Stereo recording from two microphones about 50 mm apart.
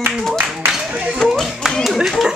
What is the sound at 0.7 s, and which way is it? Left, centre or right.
Clapping, centre.